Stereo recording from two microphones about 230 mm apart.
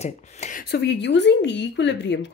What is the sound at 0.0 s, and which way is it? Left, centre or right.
A woman's voice, left.